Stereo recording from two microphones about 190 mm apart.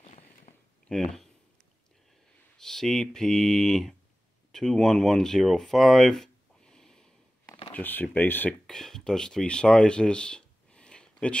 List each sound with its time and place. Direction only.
0.0 s a sound: 35° left (ahead or behind)
0.8 s speech: centre (ahead or behind)
2.5 s speech: 5° left (ahead or behind)